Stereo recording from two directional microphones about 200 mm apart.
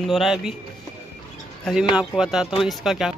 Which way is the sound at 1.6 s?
Centre (ahead or behind).